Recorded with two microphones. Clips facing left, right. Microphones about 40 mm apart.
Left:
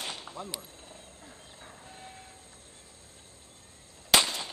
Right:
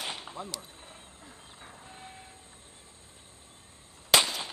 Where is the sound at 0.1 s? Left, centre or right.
Centre.